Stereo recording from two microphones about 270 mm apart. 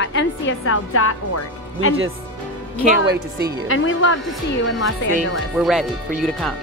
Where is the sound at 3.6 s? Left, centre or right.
Left.